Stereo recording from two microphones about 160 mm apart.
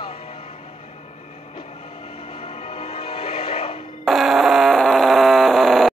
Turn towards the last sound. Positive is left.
turn(degrees=0)  # may be behind; listen again after turning